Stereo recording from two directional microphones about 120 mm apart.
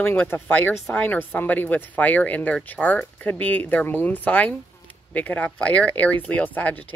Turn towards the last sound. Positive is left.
turn(degrees=15)  # may be behind; listen again after turning